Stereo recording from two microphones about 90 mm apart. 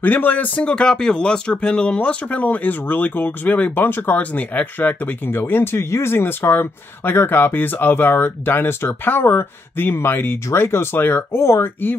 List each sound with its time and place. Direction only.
0.0 s speech: 20° left (ahead or behind)